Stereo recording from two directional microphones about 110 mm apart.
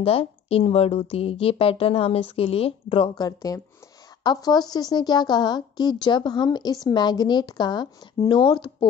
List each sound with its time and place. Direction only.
0.0 s a woman's voice: 60° left (ahead or behind)
3.2 s a woman's voice: 35° left (ahead or behind)